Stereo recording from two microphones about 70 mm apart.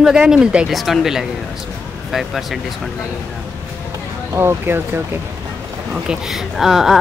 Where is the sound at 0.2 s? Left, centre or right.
Centre.